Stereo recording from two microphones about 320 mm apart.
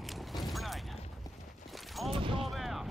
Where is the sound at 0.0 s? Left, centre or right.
Centre.